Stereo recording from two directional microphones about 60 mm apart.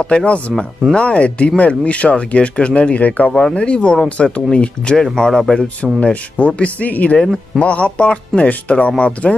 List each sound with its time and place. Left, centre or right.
0.0 s speech: centre
5.9 s speech: left
7.2 s speech: centre
7.6 s speech: left